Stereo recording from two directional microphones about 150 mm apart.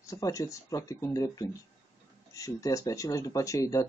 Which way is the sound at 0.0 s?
20° left (ahead or behind).